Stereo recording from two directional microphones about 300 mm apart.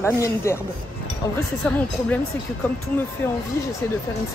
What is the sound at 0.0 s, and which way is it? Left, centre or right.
Speech, centre.